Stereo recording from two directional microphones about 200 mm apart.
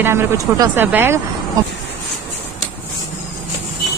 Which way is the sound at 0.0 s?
10° right (ahead or behind).